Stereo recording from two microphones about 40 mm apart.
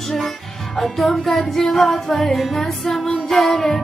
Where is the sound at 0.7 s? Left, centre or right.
Centre.